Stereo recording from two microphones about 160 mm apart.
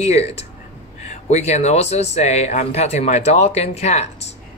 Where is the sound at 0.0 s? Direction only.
40° left (ahead or behind).